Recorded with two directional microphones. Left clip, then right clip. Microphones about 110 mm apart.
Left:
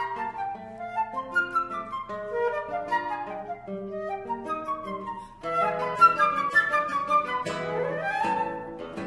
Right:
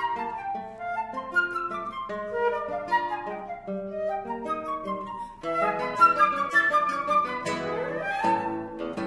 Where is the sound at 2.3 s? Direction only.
30° left (ahead or behind).